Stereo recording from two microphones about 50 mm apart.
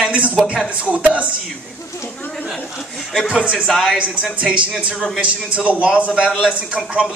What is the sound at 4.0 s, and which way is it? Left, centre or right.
A man's voice, right.